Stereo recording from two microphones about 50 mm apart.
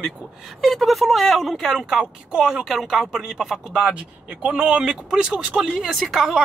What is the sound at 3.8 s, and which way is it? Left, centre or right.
Speech, right.